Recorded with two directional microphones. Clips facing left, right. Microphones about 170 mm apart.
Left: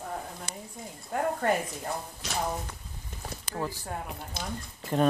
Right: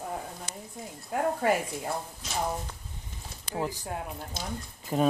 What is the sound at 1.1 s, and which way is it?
Speech, 5° right (ahead or behind).